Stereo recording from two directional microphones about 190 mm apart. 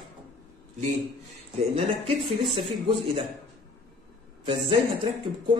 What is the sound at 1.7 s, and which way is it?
Speech, 30° right (ahead or behind).